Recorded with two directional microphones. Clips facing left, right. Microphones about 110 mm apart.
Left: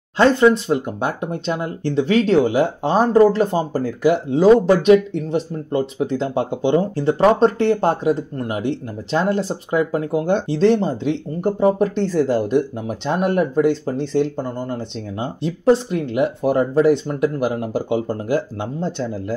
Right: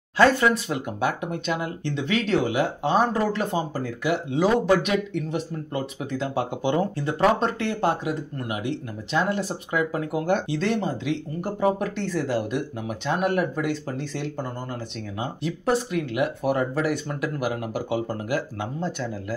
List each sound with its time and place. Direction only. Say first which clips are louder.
0.2 s speech: left 5 dB; 25° left (ahead or behind)